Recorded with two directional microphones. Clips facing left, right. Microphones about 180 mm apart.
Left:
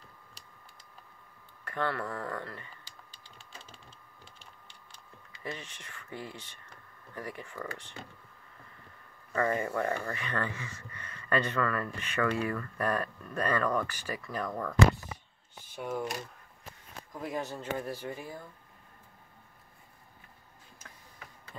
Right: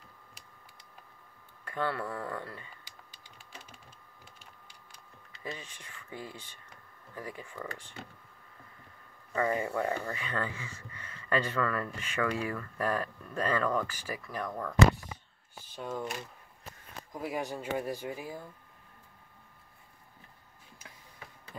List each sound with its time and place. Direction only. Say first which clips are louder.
1.6 s speech: even; 10° right (ahead or behind)
5.5 s speech: left 1 dB; 10° right (ahead or behind)
9.3 s speech: even; 15° right (ahead or behind)
11.1 s speech: left 1 dB; 20° right (ahead or behind)
13.7 s speech: left 1 dB; 10° right (ahead or behind)
15.7 s speech: left 2 dB; 10° left (ahead or behind)
17.2 s speech: right 1 dB; 10° right (ahead or behind)